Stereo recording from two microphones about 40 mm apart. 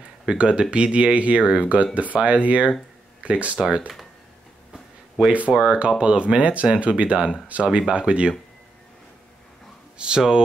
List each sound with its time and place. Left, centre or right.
0.3 s speech: right
5.2 s speech: right
9.9 s speech: right